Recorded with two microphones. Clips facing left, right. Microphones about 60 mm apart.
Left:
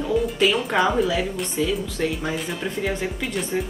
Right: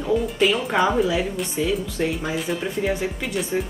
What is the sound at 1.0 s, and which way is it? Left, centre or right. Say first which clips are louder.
Speech: right 1 dB; centre.